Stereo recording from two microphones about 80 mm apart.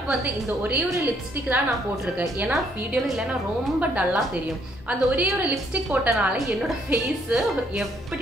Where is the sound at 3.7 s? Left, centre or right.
Centre.